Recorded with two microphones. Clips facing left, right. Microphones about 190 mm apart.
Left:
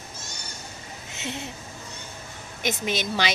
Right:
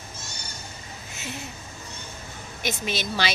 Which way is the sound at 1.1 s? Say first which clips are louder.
Left 3 dB; 25° left (ahead or behind).